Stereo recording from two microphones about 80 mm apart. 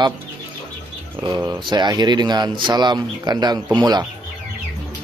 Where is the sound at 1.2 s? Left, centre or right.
Right.